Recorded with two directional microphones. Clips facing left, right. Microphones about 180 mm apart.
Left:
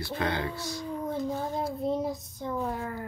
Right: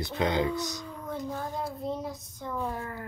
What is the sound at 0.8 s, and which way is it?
Child singing, 20° left (ahead or behind).